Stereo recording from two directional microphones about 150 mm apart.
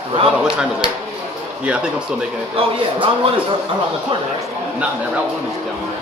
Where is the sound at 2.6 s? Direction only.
40° right (ahead or behind).